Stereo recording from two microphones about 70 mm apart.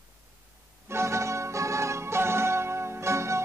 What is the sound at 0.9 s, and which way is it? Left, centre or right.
Music, right.